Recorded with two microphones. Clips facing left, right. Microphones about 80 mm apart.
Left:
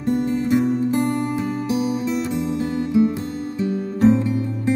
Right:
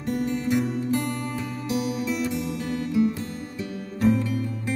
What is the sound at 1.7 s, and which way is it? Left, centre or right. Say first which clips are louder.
Music: left 2 dB; left.